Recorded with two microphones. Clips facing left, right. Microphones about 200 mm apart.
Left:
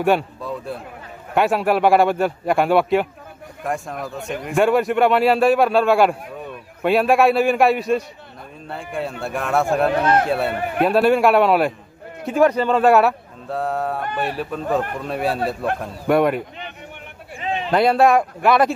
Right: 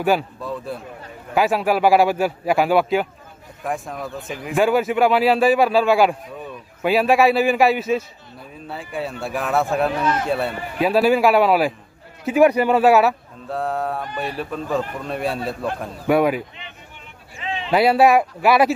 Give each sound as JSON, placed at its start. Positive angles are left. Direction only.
{"t": 0.0, "sound": "a man's voice", "side_deg": 0}
{"t": 9.2, "sound": "speech", "side_deg": 0}
{"t": 10.5, "sound": "speech", "side_deg": 60}
{"t": 10.8, "sound": "speech", "side_deg": 0}
{"t": 17.6, "sound": "speech", "side_deg": -5}